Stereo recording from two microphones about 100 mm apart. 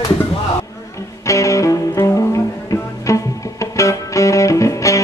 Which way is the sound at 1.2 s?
30° left (ahead or behind).